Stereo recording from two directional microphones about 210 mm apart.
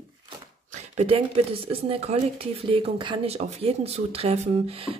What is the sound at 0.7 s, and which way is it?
Speech, 30° right (ahead or behind).